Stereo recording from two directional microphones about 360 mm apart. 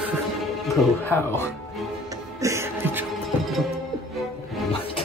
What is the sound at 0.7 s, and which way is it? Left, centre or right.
Speech, centre.